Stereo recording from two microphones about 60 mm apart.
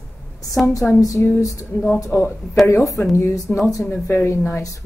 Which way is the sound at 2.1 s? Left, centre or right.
Left.